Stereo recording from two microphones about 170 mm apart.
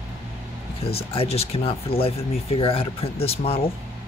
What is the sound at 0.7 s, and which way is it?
Speech, 35° left (ahead or behind).